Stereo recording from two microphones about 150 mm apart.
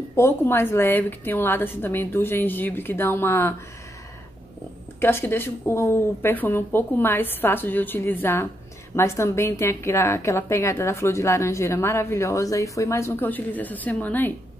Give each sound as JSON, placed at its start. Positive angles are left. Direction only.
{"t": 0.1, "sound": "speech", "side_deg": 15}
{"t": 5.0, "sound": "a woman's voice", "side_deg": 15}